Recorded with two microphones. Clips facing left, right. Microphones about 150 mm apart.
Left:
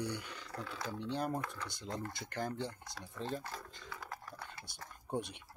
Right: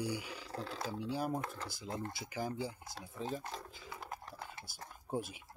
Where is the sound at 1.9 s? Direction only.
25° right (ahead or behind).